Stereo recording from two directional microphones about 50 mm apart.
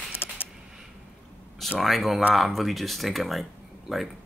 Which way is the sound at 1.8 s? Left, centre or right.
Centre.